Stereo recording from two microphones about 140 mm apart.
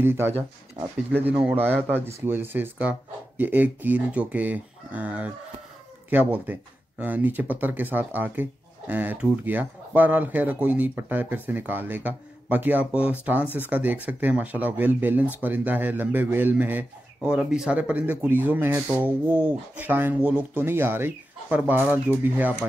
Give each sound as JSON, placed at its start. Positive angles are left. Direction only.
{"t": 0.0, "sound": "speech", "side_deg": -15}
{"t": 1.4, "sound": "speech", "side_deg": -15}